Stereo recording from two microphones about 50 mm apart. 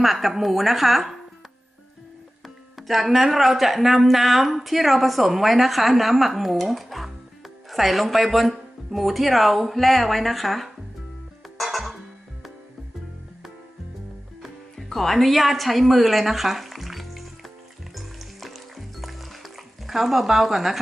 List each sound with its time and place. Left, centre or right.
0.0 s speech: centre
2.4 s speech: centre
11.5 s music: centre
14.4 s music: centre